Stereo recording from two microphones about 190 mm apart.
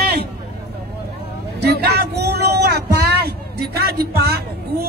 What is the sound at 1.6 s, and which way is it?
Vehicle, 60° right (ahead or behind).